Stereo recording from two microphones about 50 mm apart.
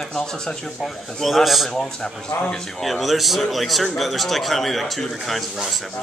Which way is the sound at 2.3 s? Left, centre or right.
Left.